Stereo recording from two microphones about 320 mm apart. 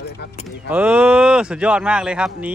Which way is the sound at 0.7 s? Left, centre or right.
Centre.